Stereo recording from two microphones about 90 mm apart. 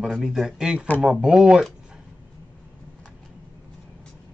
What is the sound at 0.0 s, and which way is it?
Speech, 5° right (ahead or behind).